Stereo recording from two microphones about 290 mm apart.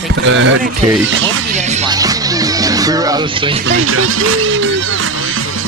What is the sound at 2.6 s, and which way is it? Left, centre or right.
Music, centre.